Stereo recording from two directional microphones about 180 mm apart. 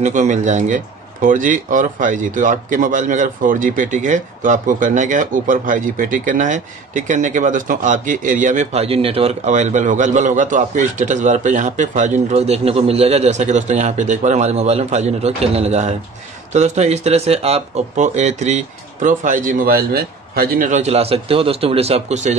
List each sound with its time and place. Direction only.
0.0 s speech: 40° right (ahead or behind)